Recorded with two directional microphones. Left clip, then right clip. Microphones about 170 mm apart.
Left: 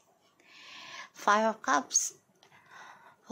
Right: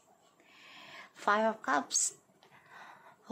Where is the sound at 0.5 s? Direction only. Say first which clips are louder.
Left 5 dB; 20° left (ahead or behind).